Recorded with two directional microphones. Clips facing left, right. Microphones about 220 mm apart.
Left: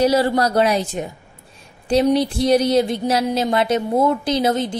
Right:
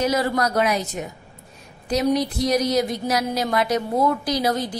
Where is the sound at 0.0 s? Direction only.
30° left (ahead or behind).